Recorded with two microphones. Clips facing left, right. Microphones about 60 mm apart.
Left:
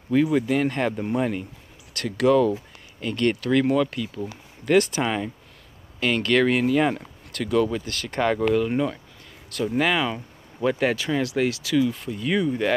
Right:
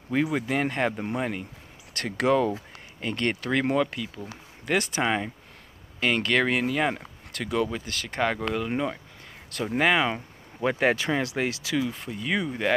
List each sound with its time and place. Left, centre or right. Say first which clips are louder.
0.1 s speech: left 5 dB; centre
2.0 s speech: left 4 dB; right; by 7.0 s centre
7.3 s speech: left 5 dB; centre